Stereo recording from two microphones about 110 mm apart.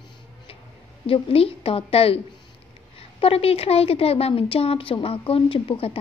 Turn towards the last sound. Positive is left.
turn(degrees=55)  # may be behind; listen again after turning